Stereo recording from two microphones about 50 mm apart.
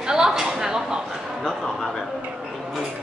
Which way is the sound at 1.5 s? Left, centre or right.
Centre.